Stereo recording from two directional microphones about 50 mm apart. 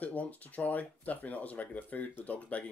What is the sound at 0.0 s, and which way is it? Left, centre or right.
Speech, left.